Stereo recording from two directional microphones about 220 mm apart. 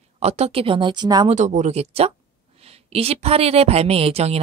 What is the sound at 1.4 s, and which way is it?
A woman's voice, 30° right (ahead or behind).